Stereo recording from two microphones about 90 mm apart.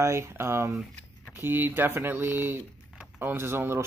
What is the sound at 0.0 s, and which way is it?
Speech, 30° right (ahead or behind).